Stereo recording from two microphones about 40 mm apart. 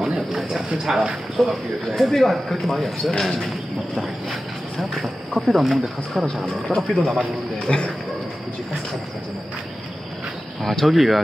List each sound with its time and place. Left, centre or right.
0.2 s a sound: centre
1.3 s speech: centre
7.5 s speech: left
10.6 s speech: centre